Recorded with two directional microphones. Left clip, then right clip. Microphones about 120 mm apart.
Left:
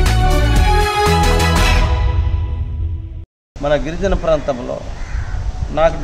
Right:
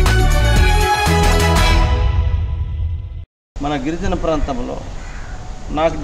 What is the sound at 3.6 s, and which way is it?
Speech, 25° left (ahead or behind).